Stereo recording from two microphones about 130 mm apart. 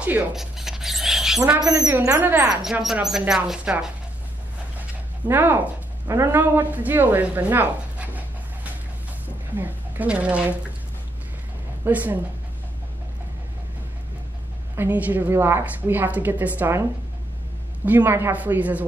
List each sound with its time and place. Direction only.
0.0 s a sound: 10° right (ahead or behind)
1.6 s speech: 30° right (ahead or behind)
2.0 s a woman's voice: 15° right (ahead or behind)
2.6 s speech: 5° right (ahead or behind)
5.3 s a woman's voice: 15° right (ahead or behind)
9.6 s speech: 10° right (ahead or behind)
11.8 s a woman's voice: 15° right (ahead or behind)
14.8 s a woman's voice: 15° right (ahead or behind)
17.8 s a woman's voice: 15° right (ahead or behind)